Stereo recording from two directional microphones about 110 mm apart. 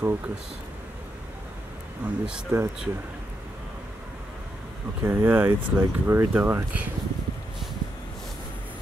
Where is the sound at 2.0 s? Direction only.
10° right (ahead or behind).